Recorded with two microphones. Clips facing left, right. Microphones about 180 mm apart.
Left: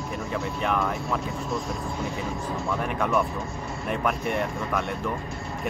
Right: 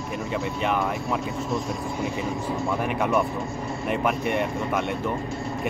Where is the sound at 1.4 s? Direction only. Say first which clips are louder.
Right 3 dB; centre (ahead or behind).